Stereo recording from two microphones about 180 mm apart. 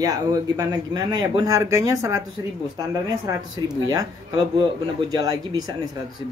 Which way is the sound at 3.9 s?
20° right (ahead or behind).